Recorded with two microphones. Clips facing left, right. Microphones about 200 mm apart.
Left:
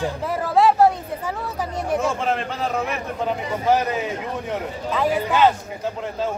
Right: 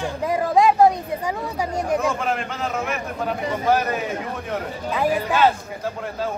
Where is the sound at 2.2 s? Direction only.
35° left (ahead or behind).